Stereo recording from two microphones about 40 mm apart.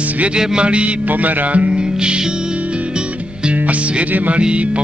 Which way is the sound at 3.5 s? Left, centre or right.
Right.